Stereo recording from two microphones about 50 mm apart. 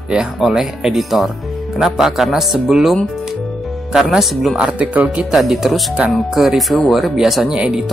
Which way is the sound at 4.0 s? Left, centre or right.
Centre.